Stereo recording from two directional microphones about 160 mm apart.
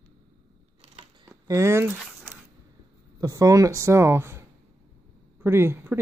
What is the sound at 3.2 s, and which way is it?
Speech, 20° right (ahead or behind).